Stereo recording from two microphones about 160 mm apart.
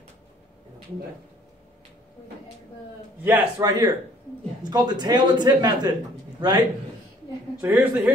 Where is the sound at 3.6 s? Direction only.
20° right (ahead or behind).